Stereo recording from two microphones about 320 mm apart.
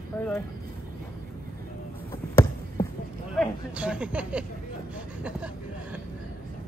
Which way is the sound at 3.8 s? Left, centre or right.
Centre.